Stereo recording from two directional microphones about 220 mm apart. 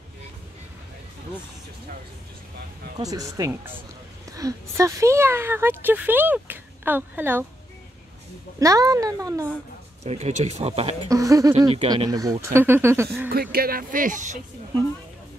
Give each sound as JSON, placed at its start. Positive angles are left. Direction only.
{"t": 3.0, "sound": "speech", "side_deg": -15}
{"t": 8.5, "sound": "speech", "side_deg": -15}
{"t": 10.0, "sound": "speech", "side_deg": -30}
{"t": 11.1, "sound": "speech", "side_deg": -15}
{"t": 11.7, "sound": "speech", "side_deg": -25}
{"t": 13.3, "sound": "speech", "side_deg": -45}